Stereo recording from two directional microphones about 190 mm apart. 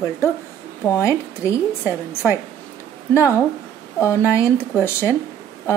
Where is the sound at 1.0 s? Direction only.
15° left (ahead or behind).